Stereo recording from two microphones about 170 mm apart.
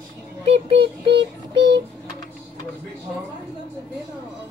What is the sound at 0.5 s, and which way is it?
Child singing, 30° right (ahead or behind).